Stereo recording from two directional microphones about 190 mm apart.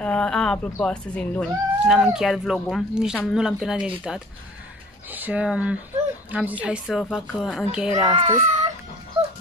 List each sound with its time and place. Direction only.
0.0 s speech: 5° left (ahead or behind)
7.9 s a child's voice: 35° right (ahead or behind)